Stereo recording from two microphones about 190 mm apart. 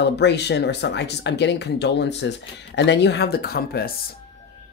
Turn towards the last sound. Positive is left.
turn(degrees=55)  # may be behind; listen again after turning